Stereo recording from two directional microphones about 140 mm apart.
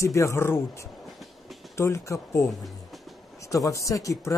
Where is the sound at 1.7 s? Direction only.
20° left (ahead or behind).